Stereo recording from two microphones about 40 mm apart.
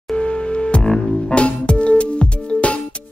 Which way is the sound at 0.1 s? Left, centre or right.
Left.